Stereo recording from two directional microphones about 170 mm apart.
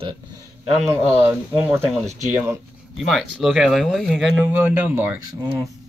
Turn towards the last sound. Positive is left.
turn(degrees=-20)  # may be behind; listen again after turning